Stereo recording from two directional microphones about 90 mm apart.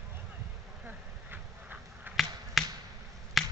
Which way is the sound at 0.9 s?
20° right (ahead or behind).